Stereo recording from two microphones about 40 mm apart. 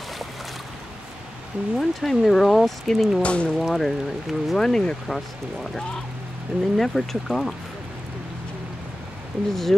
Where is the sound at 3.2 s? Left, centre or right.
Left.